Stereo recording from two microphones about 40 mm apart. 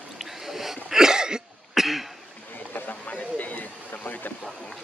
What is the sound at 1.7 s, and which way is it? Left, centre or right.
Cough, centre.